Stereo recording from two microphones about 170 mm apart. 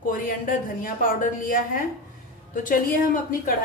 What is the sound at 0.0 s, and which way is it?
A woman's voice, 55° left (ahead or behind).